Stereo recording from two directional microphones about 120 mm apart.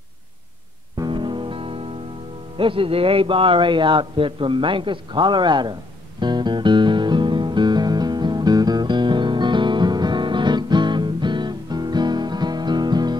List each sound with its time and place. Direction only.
0.9 s music: 40° right (ahead or behind)